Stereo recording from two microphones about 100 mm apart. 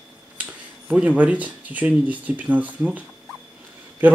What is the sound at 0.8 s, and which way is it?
Speech, 10° right (ahead or behind).